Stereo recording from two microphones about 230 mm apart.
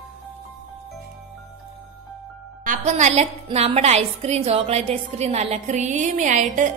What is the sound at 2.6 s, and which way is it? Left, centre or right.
A woman's voice, right.